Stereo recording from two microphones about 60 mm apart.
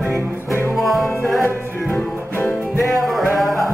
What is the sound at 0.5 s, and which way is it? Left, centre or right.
Music, right.